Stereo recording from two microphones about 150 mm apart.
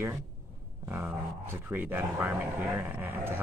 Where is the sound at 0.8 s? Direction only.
15° right (ahead or behind).